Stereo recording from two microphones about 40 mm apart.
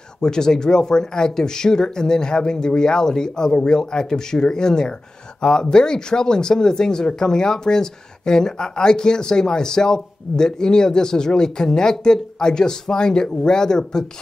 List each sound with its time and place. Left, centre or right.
0.2 s speech: centre